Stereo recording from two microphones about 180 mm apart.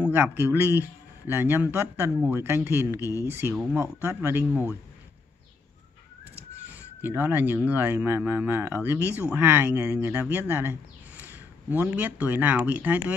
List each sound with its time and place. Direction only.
0.0 s speech: 10° right (ahead or behind)
3.0 s speech: 20° left (ahead or behind)
3.5 s speech: 15° right (ahead or behind)
6.7 s speech: 10° right (ahead or behind)